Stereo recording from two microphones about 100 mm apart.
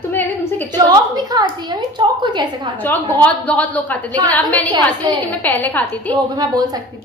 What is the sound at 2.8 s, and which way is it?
A woman's voice, 15° left (ahead or behind).